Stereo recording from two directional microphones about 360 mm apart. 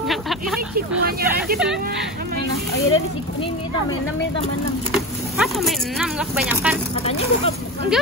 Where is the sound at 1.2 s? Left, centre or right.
Right.